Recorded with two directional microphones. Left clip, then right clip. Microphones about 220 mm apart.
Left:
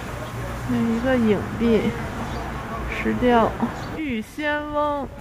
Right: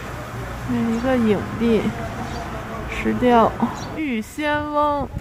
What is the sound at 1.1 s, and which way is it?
Speech, 5° right (ahead or behind).